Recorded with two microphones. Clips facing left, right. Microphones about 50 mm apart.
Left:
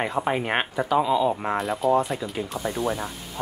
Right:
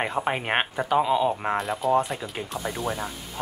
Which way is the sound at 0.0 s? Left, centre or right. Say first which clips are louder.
Left 1 dB; centre.